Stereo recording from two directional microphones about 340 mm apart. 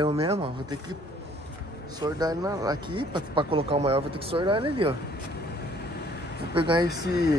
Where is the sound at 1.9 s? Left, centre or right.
Centre.